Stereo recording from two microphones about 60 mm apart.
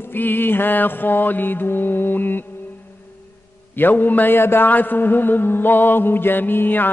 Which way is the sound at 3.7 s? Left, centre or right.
Left.